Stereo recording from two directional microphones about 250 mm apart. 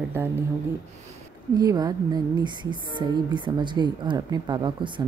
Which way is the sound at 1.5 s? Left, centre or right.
Centre.